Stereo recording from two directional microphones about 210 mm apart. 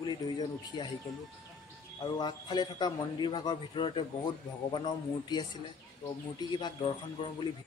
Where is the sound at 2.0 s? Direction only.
20° left (ahead or behind).